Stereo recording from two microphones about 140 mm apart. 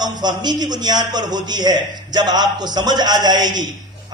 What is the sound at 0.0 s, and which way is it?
A man's voice, 30° right (ahead or behind).